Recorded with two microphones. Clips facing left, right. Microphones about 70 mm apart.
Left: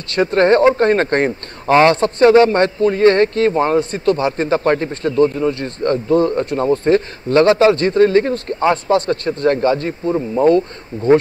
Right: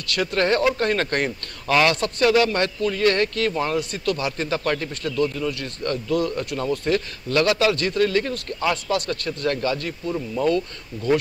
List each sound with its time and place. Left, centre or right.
0.1 s speech: left